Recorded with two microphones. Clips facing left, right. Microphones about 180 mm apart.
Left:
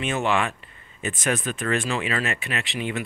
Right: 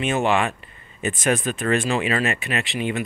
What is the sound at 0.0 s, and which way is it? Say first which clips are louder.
Speech: right 3 dB; 15° right (ahead or behind).